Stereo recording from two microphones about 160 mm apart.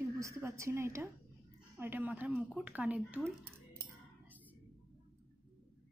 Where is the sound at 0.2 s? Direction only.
15° right (ahead or behind).